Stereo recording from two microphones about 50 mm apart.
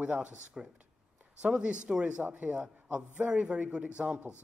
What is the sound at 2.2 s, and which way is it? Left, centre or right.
Speech, right.